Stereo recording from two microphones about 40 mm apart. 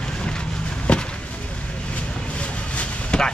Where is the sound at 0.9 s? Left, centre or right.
Left.